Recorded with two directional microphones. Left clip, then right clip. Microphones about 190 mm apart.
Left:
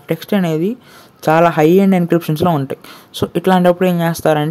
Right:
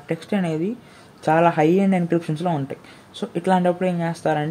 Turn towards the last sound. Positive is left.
turn(degrees=35)  # may be behind; listen again after turning